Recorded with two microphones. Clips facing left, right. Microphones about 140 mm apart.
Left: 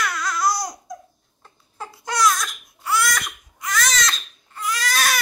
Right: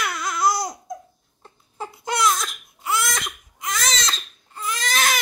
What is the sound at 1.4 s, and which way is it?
Crying, 20° right (ahead or behind).